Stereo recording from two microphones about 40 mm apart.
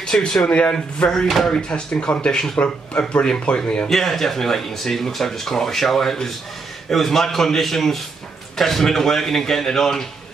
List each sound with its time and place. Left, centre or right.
0.0 s speech: centre
1.2 s speech: centre
1.5 s speech: left
2.9 s speech: left
3.3 s speech: left
3.9 s speech: centre